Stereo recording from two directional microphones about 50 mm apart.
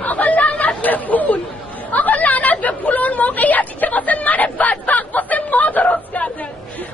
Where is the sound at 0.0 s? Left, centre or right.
Left.